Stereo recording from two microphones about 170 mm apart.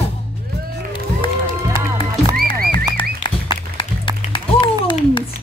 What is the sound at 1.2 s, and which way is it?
Music, 30° left (ahead or behind).